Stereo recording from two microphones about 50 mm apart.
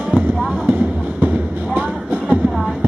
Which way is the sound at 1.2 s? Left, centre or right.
Right.